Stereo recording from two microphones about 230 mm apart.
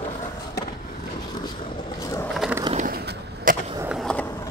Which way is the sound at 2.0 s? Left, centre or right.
Centre.